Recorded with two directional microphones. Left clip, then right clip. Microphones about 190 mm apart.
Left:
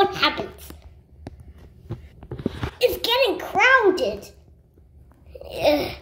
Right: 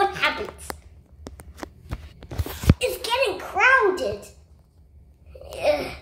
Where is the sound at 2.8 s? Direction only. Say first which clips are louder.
Left 5 dB; 20° left (ahead or behind).